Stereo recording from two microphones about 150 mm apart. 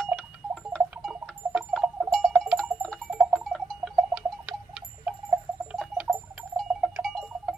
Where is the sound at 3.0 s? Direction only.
5° right (ahead or behind).